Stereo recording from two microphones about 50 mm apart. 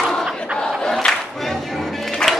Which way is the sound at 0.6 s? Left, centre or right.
Centre.